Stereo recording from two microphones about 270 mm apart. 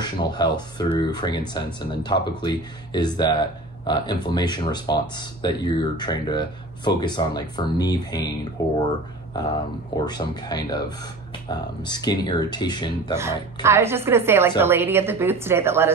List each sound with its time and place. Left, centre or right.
0.0 s speech: centre
10.0 s speech: centre
13.1 s a woman's voice: centre